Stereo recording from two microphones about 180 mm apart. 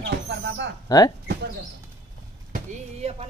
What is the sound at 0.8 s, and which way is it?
Speech, 20° left (ahead or behind).